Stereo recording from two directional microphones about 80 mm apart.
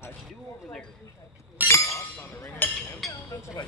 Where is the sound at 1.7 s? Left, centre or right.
Left.